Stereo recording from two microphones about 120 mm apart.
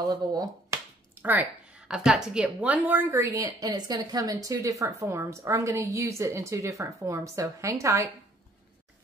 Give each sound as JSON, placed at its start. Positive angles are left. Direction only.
{"t": 0.0, "sound": "a sound", "side_deg": -35}
{"t": 1.2, "sound": "a woman's voice", "side_deg": -15}
{"t": 3.4, "sound": "a woman's voice", "side_deg": -35}